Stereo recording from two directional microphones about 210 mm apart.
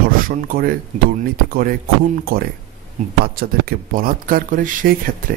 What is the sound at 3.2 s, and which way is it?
Speech, 45° right (ahead or behind).